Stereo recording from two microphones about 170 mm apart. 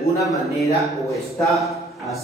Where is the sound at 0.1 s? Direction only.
20° left (ahead or behind).